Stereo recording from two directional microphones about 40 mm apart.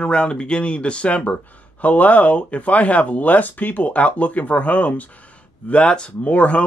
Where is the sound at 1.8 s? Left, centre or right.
Left.